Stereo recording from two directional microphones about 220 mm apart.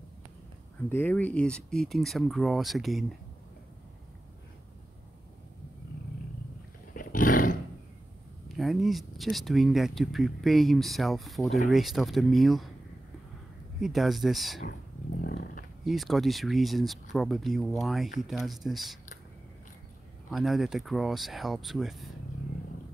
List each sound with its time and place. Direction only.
0.8 s speech: 10° left (ahead or behind)
6.9 s roar: 40° left (ahead or behind)
8.5 s speech: centre (ahead or behind)
13.7 s speech: centre (ahead or behind)
15.2 s a sound: 40° left (ahead or behind)
15.8 s speech: centre (ahead or behind)
20.2 s speech: centre (ahead or behind)